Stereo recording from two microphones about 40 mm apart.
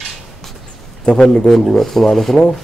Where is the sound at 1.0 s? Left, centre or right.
Left.